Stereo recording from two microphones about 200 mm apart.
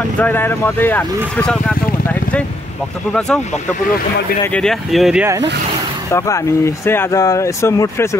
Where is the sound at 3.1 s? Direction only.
5° left (ahead or behind).